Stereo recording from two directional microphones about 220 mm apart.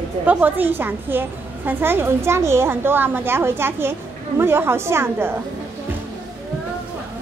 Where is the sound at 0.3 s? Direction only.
10° right (ahead or behind).